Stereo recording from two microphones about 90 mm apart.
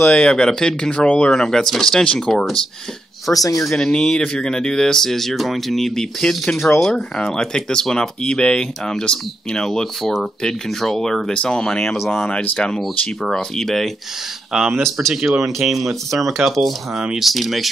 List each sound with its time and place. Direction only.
0.0 s speech: 15° left (ahead or behind)
3.3 s speech: 40° left (ahead or behind)
3.6 s speech: 10° left (ahead or behind)